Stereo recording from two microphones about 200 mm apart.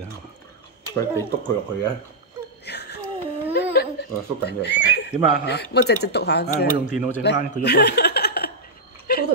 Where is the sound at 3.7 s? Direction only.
55° left (ahead or behind).